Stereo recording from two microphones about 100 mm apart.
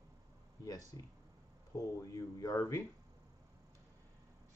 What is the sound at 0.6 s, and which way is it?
A man's voice, 35° left (ahead or behind).